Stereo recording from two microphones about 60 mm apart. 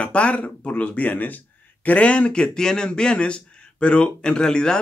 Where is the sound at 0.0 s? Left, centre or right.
Left.